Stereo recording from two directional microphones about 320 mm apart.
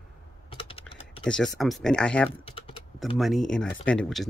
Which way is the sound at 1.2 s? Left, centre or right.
Centre.